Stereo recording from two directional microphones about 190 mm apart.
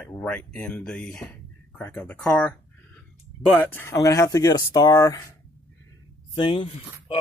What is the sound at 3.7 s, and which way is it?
Speech, 15° left (ahead or behind).